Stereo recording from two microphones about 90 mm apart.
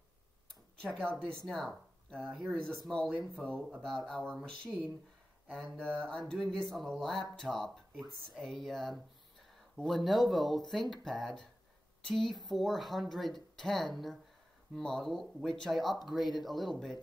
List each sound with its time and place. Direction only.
0.7 s mantra: 10° left (ahead or behind)
1.4 s speech: 5° left (ahead or behind)
2.6 s mantra: 5° left (ahead or behind)
3.8 s speech: 5° left (ahead or behind)
4.7 s speech: 5° right (ahead or behind)
5.5 s mantra: 5° left (ahead or behind)
6.8 s speech: centre (ahead or behind)
12.4 s speech: centre (ahead or behind)